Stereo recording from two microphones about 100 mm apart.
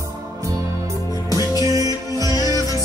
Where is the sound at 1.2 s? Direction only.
35° left (ahead or behind).